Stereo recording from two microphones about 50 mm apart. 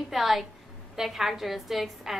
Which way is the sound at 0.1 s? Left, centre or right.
Centre.